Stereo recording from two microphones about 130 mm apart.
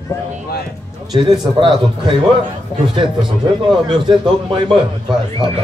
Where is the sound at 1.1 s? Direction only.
35° right (ahead or behind).